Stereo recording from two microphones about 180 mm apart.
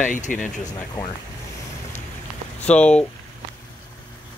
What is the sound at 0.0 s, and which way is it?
Speech, 45° left (ahead or behind).